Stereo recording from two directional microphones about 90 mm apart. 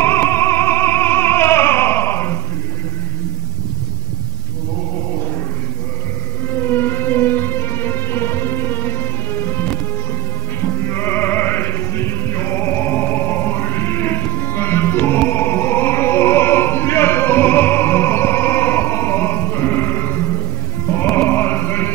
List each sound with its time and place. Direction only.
0.0 s music: 25° left (ahead or behind)
6.5 s music: 25° left (ahead or behind)